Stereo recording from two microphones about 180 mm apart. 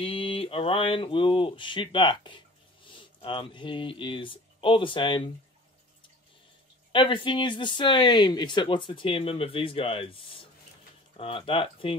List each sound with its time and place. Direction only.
0.0 s speech: 30° left (ahead or behind)
6.9 s speech: 25° left (ahead or behind)
11.1 s speech: 30° left (ahead or behind)